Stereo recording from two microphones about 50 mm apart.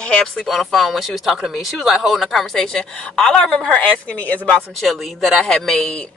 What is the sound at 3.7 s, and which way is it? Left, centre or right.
Speech, left.